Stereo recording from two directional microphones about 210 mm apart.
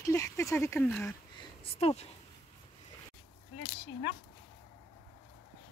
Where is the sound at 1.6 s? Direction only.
30° left (ahead or behind).